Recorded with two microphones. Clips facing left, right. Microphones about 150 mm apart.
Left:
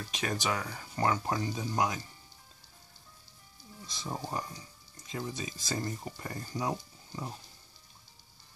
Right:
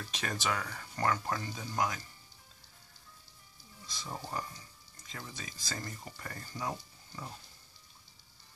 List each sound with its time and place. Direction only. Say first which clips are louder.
0.1 s speech: left 3 dB; 10° left (ahead or behind)
3.8 s speech: left 4 dB; 20° left (ahead or behind)